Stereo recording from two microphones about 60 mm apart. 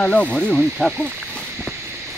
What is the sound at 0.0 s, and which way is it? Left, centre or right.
Speech, centre.